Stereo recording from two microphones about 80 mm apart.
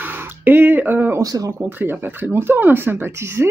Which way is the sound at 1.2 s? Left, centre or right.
Right.